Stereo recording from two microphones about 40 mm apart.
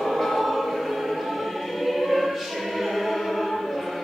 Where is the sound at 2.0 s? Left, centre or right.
Centre.